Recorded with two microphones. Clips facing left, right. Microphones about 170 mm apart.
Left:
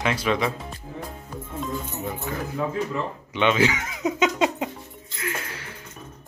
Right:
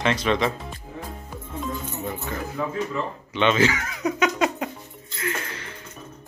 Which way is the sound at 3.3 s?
10° left (ahead or behind).